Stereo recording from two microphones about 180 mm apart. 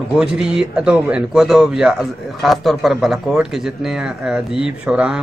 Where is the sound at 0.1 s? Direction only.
5° right (ahead or behind).